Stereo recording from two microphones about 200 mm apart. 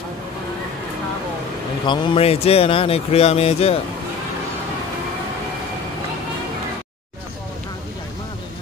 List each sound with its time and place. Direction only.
1.9 s speech: 25° left (ahead or behind)